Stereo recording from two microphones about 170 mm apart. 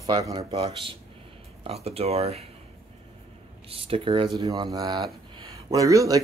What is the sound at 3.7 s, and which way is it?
Speech, 35° right (ahead or behind).